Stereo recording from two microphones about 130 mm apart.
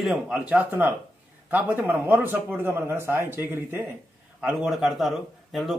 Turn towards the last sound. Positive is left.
turn(degrees=0)  # may be behind; listen again after turning